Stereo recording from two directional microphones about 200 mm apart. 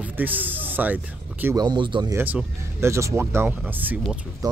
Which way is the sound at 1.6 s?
20° right (ahead or behind).